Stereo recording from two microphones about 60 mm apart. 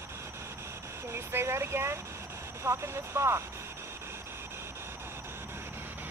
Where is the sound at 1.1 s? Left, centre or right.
Right.